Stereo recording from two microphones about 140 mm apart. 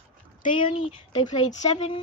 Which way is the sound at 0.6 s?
40° left (ahead or behind).